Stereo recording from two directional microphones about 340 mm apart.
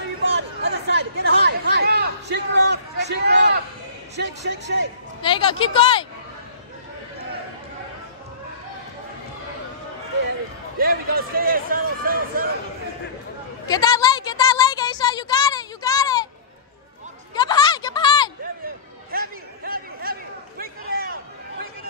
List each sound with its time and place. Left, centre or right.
0.4 s chatter: right
4.2 s a man's voice: right
5.2 s speech: centre
10.8 s a man's voice: right
13.7 s a sound: centre
17.4 s a sound: centre
19.1 s chatter: right